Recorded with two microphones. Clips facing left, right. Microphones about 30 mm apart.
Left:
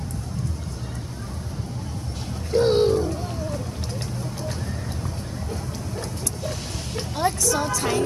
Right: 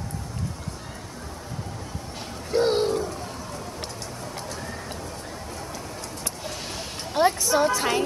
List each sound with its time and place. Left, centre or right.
2.5 s a sound: centre
2.8 s gargling: centre
7.2 s a woman's voice: right